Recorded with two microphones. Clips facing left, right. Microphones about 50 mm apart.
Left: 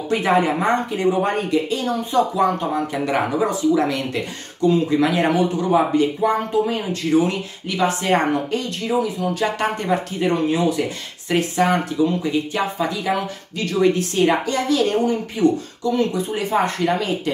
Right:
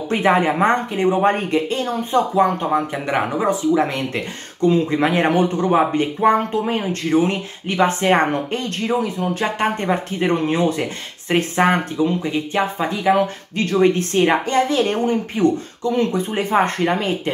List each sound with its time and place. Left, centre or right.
0.1 s speech: right